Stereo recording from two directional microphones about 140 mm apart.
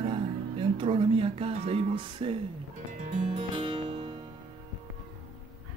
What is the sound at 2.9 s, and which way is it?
Music, 65° right (ahead or behind).